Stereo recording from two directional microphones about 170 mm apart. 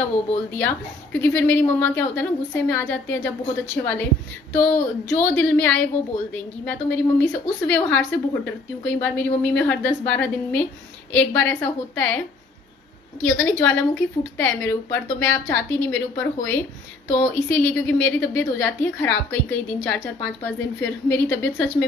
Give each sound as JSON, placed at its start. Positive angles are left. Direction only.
{"t": 0.5, "sound": "a woman's voice", "side_deg": 10}
{"t": 13.2, "sound": "a woman's voice", "side_deg": 15}